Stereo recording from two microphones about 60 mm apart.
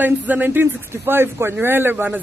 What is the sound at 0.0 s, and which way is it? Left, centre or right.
A man's voice, right.